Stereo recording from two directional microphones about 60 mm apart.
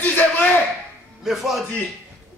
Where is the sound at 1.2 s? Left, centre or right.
Centre.